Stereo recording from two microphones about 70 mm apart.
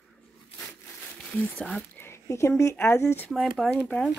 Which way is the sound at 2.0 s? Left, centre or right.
Left.